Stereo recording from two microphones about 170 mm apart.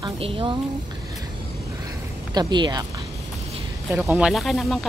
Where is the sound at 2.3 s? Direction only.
25° right (ahead or behind).